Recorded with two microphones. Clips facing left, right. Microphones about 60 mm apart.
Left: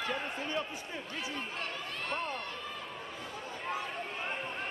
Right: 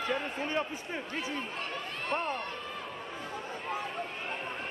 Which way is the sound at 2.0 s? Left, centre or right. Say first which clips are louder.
Right 4 dB; right.